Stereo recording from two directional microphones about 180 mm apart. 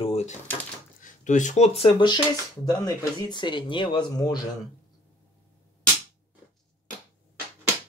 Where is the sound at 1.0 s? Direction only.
45° left (ahead or behind); by 4.4 s 20° left (ahead or behind).